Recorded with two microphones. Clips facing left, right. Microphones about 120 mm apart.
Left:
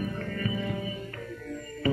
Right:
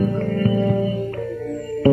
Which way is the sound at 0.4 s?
40° right (ahead or behind).